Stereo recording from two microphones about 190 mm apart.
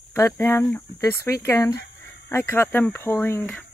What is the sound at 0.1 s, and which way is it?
Speech, 15° left (ahead or behind).